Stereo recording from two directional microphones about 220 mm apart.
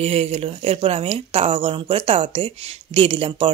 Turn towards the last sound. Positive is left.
turn(degrees=-25)  # may be behind; listen again after turning